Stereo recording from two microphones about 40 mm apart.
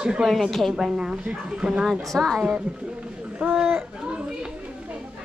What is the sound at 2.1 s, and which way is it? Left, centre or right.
Speech, centre.